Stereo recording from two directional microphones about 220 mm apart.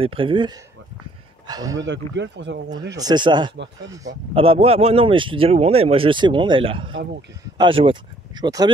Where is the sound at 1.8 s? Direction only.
55° right (ahead or behind).